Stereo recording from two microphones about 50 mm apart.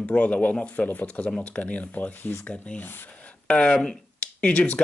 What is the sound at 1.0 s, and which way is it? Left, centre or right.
A man's voice, left.